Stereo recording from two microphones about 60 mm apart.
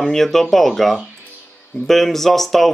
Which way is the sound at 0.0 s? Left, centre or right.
Centre.